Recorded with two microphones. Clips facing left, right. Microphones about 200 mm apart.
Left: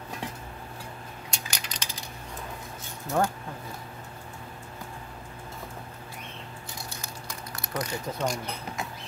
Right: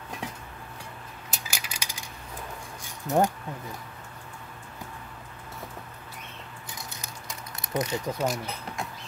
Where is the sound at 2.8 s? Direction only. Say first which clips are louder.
Right 3 dB; 20° right (ahead or behind).